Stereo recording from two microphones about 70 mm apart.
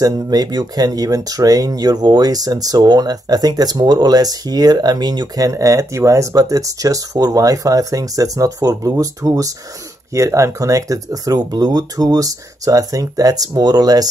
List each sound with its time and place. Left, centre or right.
0.0 s speech: right